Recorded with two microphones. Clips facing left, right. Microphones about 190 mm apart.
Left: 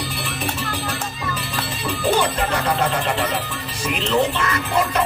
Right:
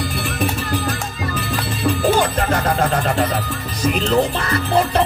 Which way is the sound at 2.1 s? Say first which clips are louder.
Right 2 dB; 45° right (ahead or behind).